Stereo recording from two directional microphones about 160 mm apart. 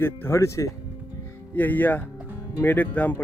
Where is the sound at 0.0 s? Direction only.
15° left (ahead or behind).